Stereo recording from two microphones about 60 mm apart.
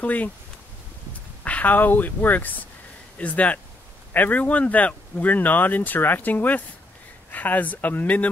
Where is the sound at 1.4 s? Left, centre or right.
Left.